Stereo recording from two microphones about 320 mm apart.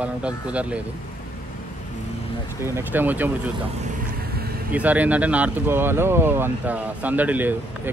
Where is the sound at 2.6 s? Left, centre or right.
Centre.